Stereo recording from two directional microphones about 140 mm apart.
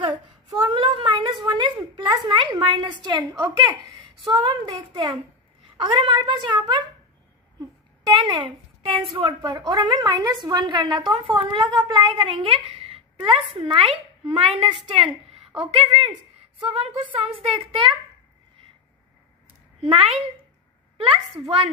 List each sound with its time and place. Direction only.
0.5 s a sound: 35° right (ahead or behind)
4.5 s a woman's voice: 35° right (ahead or behind)
8.1 s a woman's voice: 35° right (ahead or behind)
19.8 s a woman's voice: 40° right (ahead or behind)